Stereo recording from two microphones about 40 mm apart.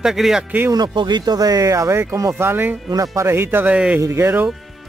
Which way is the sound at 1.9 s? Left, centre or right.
Right.